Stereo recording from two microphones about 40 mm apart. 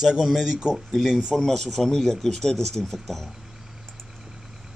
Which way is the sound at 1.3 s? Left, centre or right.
Centre.